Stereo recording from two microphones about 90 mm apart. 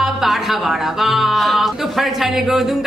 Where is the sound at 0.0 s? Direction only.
5° right (ahead or behind).